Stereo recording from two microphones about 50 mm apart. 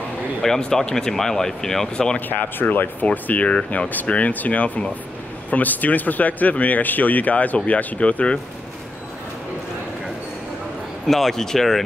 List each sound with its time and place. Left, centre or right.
0.4 s speech: centre
2.1 s speech: left
3.3 s speech: left
11.1 s speech: centre